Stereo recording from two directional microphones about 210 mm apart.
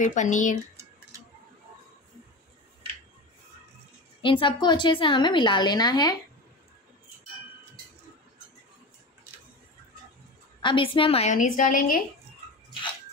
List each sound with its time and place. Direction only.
0.0 s a woman's voice: 35° left (ahead or behind)
4.2 s a woman's voice: 25° left (ahead or behind)
10.6 s a woman's voice: 25° left (ahead or behind); by 12.0 s 40° left (ahead or behind)